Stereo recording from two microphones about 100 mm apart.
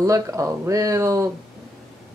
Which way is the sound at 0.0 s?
30° right (ahead or behind).